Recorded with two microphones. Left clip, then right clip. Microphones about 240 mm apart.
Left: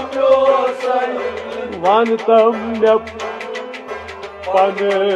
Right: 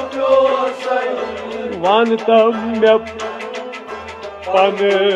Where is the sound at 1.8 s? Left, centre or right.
Right.